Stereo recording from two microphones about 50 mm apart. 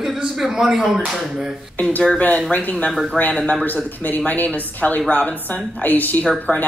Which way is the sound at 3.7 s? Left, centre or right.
Left.